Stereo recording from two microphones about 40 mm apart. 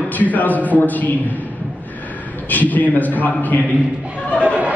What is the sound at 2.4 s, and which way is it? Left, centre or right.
A man's voice, left.